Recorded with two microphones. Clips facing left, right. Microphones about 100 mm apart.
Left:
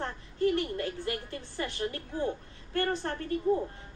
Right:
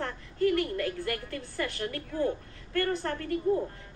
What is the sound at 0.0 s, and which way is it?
A woman's voice, 25° left (ahead or behind).